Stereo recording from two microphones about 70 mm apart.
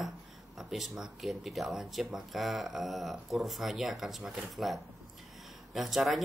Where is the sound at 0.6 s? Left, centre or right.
Centre.